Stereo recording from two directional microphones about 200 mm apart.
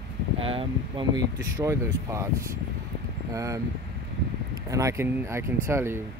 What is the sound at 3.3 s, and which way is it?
Speech, 15° right (ahead or behind).